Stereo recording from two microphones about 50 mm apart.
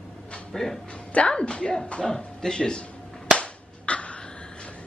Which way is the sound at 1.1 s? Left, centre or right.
Left.